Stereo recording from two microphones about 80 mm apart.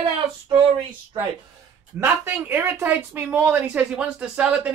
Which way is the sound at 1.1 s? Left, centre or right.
Right.